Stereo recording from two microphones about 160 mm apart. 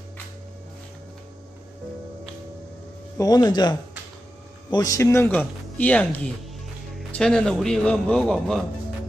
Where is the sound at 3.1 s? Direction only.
20° left (ahead or behind).